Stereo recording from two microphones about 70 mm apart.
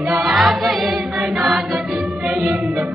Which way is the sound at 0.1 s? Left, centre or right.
Centre.